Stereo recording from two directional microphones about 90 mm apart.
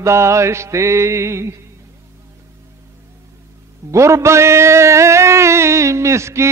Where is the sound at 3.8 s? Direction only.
35° right (ahead or behind).